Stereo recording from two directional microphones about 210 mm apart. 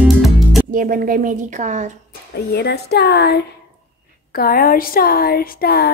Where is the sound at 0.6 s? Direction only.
40° right (ahead or behind).